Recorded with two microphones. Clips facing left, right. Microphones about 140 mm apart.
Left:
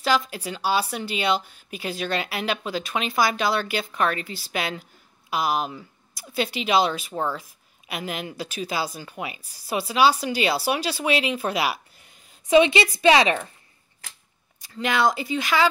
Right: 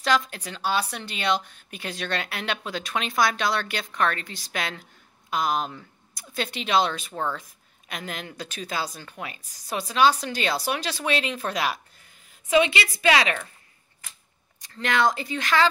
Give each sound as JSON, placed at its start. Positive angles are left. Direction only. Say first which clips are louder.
{"t": 0.0, "sound": "speech", "louder": "left 1 dB", "side_deg": 5}
{"t": 12.0, "sound": "speech", "louder": "left 2 dB", "side_deg": 20}
{"t": 14.7, "sound": "speech", "louder": "left 1 dB", "side_deg": 10}